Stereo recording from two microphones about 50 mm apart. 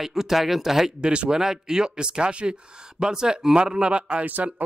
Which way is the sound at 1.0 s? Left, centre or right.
Centre.